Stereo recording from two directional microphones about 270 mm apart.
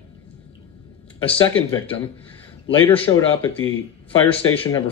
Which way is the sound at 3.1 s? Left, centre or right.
Left.